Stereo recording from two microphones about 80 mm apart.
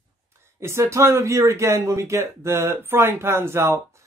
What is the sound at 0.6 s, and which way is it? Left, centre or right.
Speech, right.